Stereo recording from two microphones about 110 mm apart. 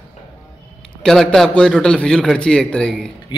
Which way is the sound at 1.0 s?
5° left (ahead or behind).